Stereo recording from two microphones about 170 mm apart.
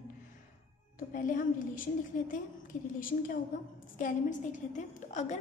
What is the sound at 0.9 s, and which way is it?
Speech, 50° left (ahead or behind).